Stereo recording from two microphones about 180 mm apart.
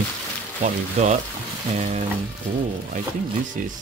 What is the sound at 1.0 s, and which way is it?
Speech, 35° right (ahead or behind).